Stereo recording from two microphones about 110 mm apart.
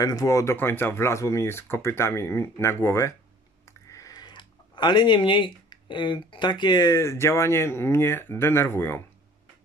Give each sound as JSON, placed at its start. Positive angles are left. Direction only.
{"t": 0.0, "sound": "speech", "side_deg": 30}